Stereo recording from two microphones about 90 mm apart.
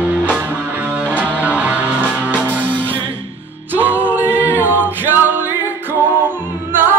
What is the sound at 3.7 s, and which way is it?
Music, 20° right (ahead or behind).